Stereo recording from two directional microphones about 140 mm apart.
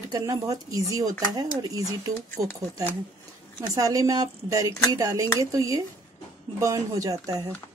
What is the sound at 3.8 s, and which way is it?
Speech, 25° right (ahead or behind).